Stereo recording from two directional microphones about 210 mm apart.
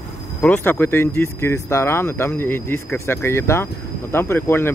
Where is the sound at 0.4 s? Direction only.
10° left (ahead or behind).